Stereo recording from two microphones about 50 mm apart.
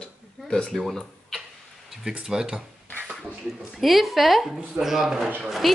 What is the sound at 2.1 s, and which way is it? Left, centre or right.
Speech, centre.